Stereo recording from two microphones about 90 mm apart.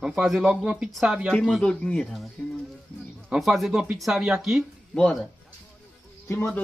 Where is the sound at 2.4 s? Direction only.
20° left (ahead or behind).